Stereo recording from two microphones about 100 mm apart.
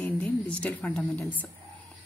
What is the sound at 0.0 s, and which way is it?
A woman's voice, 15° left (ahead or behind).